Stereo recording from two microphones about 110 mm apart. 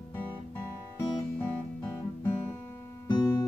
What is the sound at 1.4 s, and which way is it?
Music, 20° left (ahead or behind).